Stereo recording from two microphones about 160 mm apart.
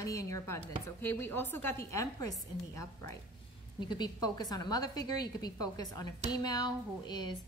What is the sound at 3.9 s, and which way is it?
A woman's voice, 25° left (ahead or behind).